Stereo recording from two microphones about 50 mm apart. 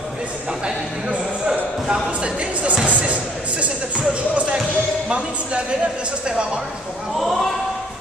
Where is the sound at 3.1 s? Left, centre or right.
Right.